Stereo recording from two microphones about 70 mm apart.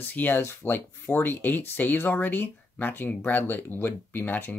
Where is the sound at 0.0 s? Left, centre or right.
Left.